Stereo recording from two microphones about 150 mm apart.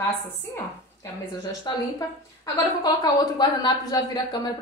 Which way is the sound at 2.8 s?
25° left (ahead or behind).